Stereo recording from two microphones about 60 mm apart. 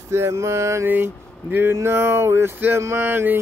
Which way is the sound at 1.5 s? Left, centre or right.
Right.